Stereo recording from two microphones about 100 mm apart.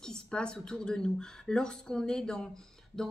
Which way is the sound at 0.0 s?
10° left (ahead or behind).